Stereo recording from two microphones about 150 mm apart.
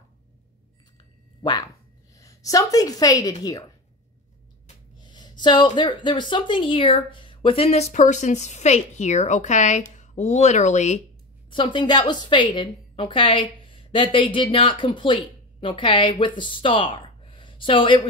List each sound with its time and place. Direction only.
1.4 s a woman's voice: 30° left (ahead or behind)
5.0 s a sound: 30° left (ahead or behind)
5.4 s a woman's voice: 30° left (ahead or behind); by 11.0 s 50° left (ahead or behind)
11.5 s a woman's voice: 30° left (ahead or behind)